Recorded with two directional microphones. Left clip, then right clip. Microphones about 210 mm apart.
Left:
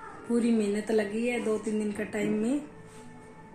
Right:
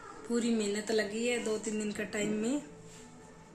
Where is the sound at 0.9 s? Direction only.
15° left (ahead or behind).